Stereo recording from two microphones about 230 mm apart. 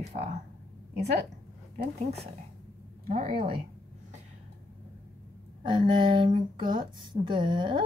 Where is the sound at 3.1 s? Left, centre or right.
Right.